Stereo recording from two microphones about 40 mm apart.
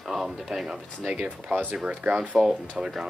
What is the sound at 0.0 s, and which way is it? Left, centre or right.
Music, centre.